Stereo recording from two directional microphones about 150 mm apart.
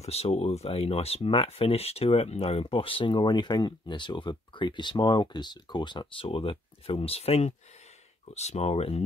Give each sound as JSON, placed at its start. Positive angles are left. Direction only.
{"t": 0.0, "sound": "speech", "side_deg": 45}